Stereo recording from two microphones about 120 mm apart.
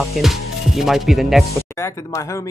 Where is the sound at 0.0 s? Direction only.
Centre (ahead or behind).